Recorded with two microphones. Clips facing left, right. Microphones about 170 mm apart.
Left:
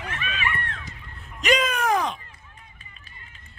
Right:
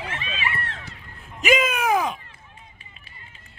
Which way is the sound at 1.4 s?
5° right (ahead or behind).